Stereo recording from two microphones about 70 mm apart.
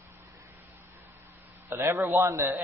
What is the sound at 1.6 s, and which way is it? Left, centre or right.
Speech, right.